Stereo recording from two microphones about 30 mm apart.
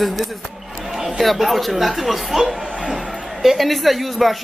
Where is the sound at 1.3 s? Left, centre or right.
Centre.